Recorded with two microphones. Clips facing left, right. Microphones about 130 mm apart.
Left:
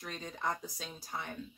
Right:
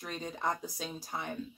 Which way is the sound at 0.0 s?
20° right (ahead or behind).